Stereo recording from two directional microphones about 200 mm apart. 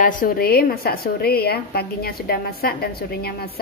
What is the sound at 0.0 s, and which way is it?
A woman's voice, 40° left (ahead or behind).